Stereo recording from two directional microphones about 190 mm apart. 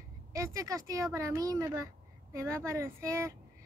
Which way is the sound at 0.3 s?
15° right (ahead or behind).